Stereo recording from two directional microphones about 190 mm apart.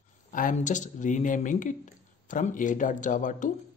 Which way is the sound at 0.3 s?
45° left (ahead or behind).